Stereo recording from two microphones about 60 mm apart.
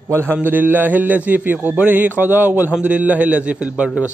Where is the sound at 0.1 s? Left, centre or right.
Right.